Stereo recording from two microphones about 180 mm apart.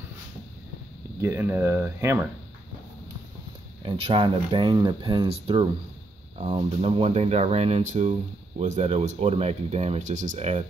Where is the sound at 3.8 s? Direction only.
30° right (ahead or behind).